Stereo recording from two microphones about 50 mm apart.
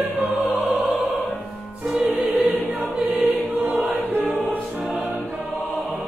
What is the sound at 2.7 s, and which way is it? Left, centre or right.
Choir, right.